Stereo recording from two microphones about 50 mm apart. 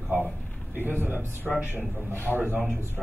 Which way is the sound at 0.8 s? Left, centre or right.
Right.